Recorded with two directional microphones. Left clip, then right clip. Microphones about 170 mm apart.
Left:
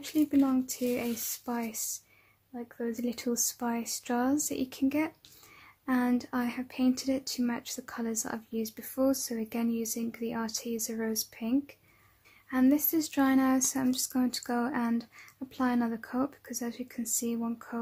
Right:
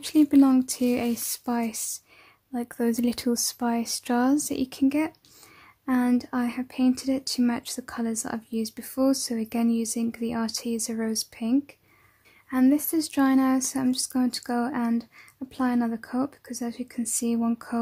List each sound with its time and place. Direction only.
0.0 s speech: 35° right (ahead or behind)
2.5 s speech: 40° right (ahead or behind)